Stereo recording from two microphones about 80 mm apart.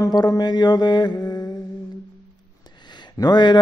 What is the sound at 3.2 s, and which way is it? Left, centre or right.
Speech, left.